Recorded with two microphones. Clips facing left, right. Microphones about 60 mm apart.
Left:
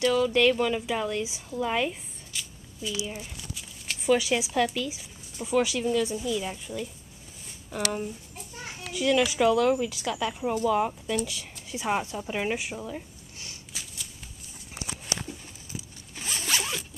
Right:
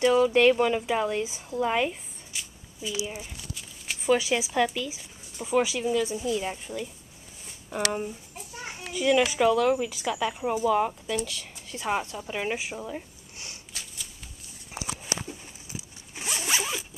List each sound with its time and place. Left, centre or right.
0.0 s speech: right
6.2 s a woman's voice: centre
7.7 s speech: centre
8.5 s children playing: centre
9.3 s speech: centre
11.2 s speech: centre
13.7 s shuffling cards: centre
15.1 s zipper: centre